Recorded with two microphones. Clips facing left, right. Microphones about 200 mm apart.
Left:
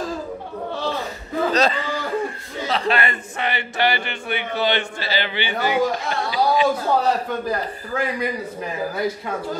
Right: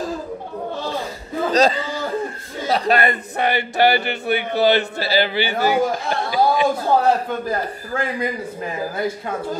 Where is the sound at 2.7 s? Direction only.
40° right (ahead or behind).